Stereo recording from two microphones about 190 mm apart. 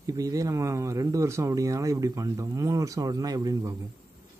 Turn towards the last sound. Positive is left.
turn(degrees=-20)  # may be behind; listen again after turning